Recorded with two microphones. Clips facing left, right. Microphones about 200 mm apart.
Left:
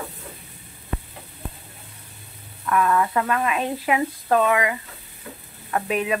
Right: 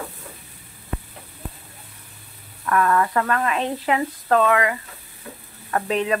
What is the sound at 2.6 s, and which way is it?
Speech, 5° left (ahead or behind).